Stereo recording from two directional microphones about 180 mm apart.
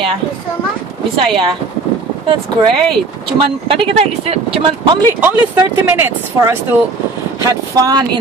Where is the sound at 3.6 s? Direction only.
30° right (ahead or behind).